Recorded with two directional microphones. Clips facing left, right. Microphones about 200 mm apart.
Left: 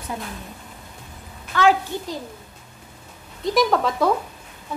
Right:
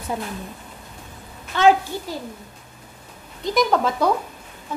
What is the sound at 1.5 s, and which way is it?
Speech, 25° right (ahead or behind).